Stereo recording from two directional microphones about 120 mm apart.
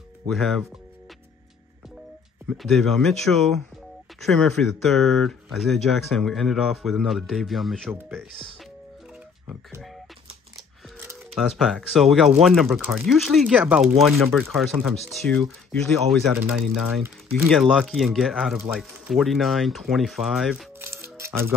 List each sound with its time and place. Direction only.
0.3 s speech: centre (ahead or behind)
2.4 s speech: centre (ahead or behind)
11.3 s speech: centre (ahead or behind)
20.8 s music: 20° right (ahead or behind)